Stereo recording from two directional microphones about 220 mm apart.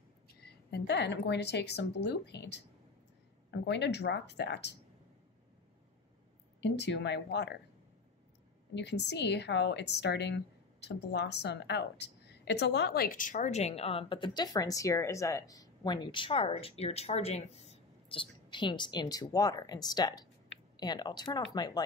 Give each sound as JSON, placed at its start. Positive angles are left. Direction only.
{"t": 0.7, "sound": "a woman's voice", "side_deg": 50}
{"t": 6.6, "sound": "a woman's voice", "side_deg": 50}
{"t": 8.7, "sound": "a woman's voice", "side_deg": 50}